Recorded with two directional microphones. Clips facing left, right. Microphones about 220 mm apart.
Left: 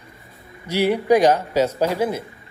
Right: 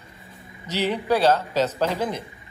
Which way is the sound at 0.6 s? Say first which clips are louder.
Left 6 dB; 10° left (ahead or behind).